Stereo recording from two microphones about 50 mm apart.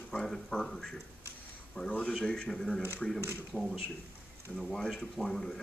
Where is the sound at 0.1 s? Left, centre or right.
Centre.